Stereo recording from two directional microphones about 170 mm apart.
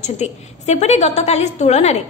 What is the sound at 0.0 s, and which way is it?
A woman's voice, 40° left (ahead or behind).